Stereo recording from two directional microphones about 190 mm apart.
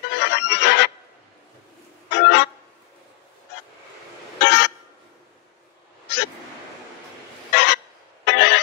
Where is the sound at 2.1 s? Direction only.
65° left (ahead or behind).